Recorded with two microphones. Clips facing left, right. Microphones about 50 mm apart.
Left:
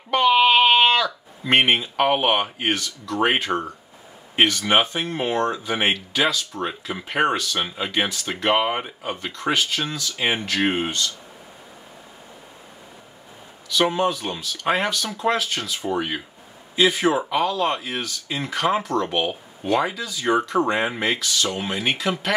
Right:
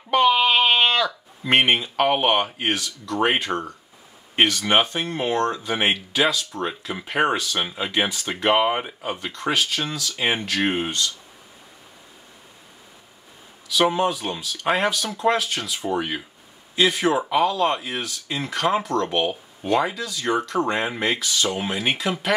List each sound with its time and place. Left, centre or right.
0.1 s speech: centre
13.7 s speech: centre
21.2 s speech: centre
21.5 s speech: centre